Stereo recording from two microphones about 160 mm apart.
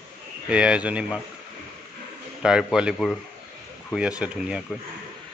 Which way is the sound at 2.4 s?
5° right (ahead or behind).